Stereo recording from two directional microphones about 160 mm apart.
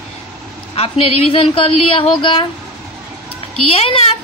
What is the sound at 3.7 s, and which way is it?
Speech, 35° left (ahead or behind).